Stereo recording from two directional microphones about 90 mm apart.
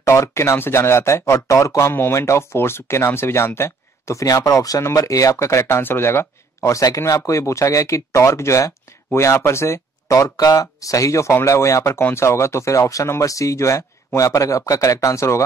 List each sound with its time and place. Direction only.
0.0 s speech: 30° left (ahead or behind)